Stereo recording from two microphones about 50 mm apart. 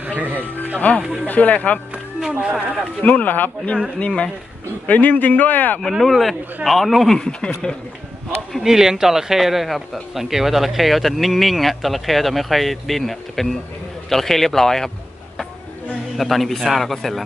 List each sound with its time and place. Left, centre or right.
0.0 s music: right
0.7 s speech: left
3.0 s speech: left
4.0 s speech: left
5.8 s speech: centre
7.2 s speech: centre
8.5 s speech: centre
16.2 s speech: centre